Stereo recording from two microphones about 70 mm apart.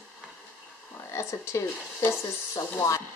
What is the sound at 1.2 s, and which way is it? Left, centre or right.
Speech, left.